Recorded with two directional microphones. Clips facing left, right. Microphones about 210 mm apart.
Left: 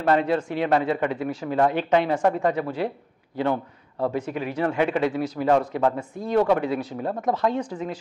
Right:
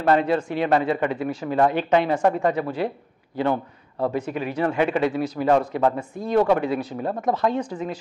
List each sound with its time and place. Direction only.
0.0 s a man's voice: 10° right (ahead or behind)
4.3 s a man's voice: 10° right (ahead or behind)